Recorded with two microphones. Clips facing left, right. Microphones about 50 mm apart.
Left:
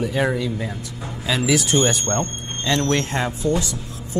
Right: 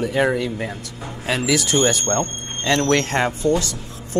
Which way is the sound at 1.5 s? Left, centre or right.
Right.